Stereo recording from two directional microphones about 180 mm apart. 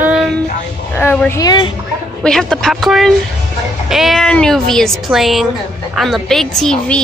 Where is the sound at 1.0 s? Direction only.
10° left (ahead or behind).